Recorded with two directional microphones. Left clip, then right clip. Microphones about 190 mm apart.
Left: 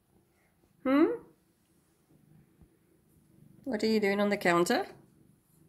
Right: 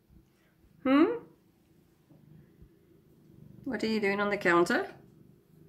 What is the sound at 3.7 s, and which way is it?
A woman's voice, 25° left (ahead or behind).